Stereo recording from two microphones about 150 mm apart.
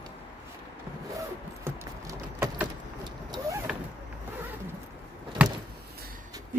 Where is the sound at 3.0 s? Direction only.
25° right (ahead or behind).